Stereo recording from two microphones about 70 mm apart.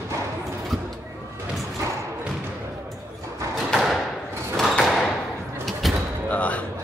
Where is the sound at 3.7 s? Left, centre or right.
Centre.